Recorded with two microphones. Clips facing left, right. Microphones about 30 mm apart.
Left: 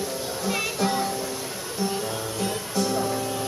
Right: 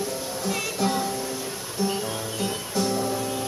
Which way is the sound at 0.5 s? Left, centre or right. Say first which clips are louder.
Left 1 dB; centre.